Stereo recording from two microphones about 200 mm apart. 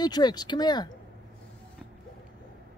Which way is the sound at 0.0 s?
20° left (ahead or behind).